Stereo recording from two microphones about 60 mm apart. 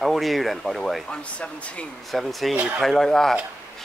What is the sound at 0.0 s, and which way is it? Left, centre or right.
Speech, centre.